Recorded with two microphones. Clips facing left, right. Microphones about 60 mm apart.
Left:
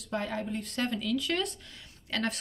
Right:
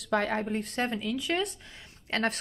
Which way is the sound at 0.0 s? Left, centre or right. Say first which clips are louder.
Right 6 dB; right.